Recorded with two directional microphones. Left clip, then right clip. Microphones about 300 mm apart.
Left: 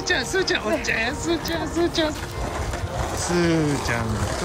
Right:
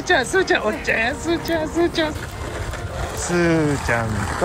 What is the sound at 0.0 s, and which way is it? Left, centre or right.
Speech, centre.